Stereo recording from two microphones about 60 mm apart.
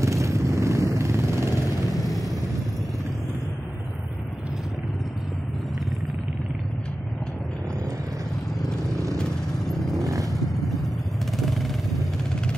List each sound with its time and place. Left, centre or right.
0.0 s vehicle: right
8.9 s vehicle: right
9.2 s vehicle: centre